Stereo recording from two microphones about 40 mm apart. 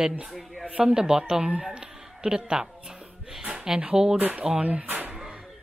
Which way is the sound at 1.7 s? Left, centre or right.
Centre.